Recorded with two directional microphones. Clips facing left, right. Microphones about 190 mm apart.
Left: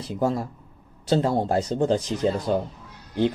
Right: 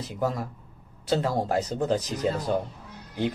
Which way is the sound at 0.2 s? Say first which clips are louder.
Left 4 dB; 30° left (ahead or behind).